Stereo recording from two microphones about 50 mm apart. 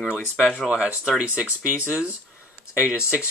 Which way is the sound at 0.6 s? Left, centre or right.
Centre.